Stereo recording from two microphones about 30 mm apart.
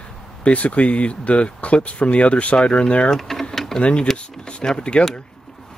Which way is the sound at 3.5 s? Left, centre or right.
Centre.